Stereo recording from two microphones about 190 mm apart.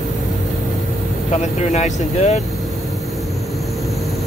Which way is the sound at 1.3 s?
35° left (ahead or behind).